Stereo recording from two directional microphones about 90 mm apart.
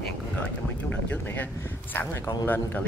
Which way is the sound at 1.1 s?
20° left (ahead or behind).